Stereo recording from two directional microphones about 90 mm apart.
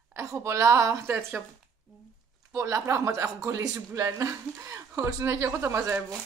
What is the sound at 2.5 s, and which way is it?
Speech, 35° right (ahead or behind).